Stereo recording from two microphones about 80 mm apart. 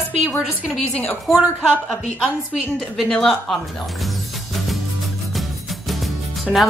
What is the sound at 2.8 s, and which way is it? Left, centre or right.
Speech, centre.